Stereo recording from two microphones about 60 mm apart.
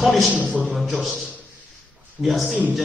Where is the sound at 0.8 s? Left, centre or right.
Centre.